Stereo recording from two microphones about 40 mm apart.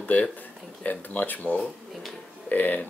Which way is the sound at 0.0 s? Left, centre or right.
Left.